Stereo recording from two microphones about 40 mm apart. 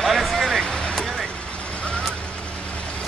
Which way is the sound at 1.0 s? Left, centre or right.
Centre.